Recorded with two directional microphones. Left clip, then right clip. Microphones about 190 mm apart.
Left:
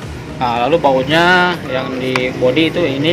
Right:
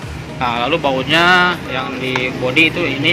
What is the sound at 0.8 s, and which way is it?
Speech, 15° right (ahead or behind).